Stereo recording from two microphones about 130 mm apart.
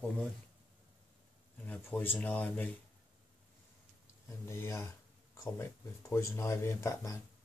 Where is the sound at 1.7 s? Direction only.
15° left (ahead or behind).